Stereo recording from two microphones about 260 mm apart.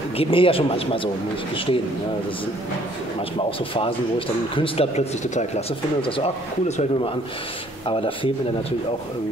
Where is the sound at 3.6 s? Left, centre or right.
Centre.